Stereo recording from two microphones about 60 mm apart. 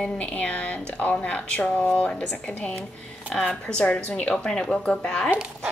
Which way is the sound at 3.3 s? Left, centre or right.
Centre.